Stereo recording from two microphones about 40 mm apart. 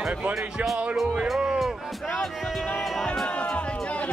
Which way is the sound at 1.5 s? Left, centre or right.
Centre.